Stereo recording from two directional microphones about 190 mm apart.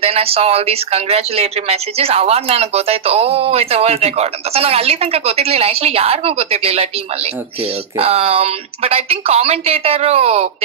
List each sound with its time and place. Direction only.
0.0 s speech: 30° right (ahead or behind)
8.0 s speech: 30° right (ahead or behind)